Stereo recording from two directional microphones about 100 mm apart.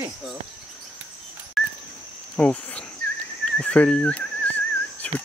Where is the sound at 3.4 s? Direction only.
10° left (ahead or behind).